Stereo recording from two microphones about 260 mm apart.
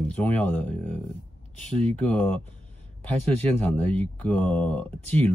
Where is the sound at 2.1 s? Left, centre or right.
Centre.